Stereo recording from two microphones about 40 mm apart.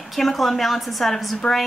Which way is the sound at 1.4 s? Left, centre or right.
Left.